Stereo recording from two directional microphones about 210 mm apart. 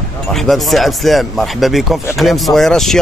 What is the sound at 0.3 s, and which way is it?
Speech, centre (ahead or behind).